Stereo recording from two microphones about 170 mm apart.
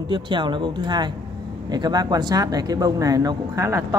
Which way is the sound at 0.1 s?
25° right (ahead or behind).